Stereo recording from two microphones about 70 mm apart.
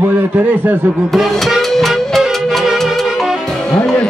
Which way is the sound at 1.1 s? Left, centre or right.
Centre.